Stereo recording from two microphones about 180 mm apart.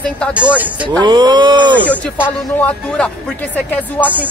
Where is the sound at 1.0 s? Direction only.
25° right (ahead or behind).